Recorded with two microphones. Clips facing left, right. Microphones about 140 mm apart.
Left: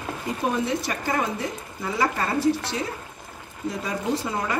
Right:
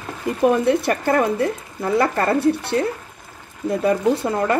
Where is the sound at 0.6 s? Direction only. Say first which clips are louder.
Right 9 dB; 60° right (ahead or behind).